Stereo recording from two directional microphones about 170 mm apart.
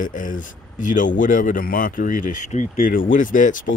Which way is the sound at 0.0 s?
50° left (ahead or behind).